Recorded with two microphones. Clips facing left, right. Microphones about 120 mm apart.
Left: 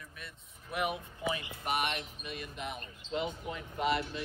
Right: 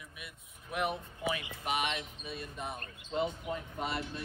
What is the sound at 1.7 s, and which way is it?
Speech, 55° left (ahead or behind).